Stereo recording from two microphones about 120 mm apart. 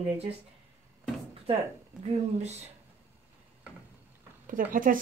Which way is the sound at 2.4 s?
65° right (ahead or behind).